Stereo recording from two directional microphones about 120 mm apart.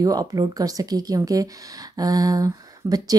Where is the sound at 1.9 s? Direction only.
30° right (ahead or behind).